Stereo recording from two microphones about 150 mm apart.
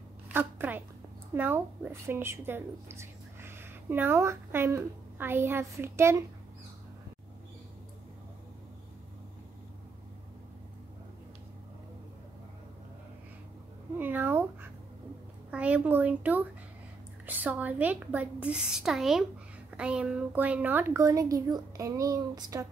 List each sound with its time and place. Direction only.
0.3 s a woman's voice: 10° right (ahead or behind)
13.9 s cat: 10° right (ahead or behind)
15.5 s a woman's voice: 10° right (ahead or behind); by 22.7 s 25° right (ahead or behind)